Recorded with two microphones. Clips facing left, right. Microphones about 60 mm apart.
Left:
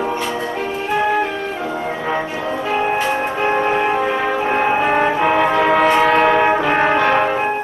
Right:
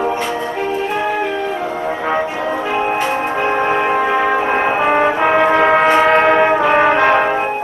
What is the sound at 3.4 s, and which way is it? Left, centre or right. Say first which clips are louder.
Brass instrument: even; centre.